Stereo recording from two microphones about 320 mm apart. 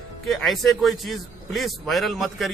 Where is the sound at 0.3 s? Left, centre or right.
Centre.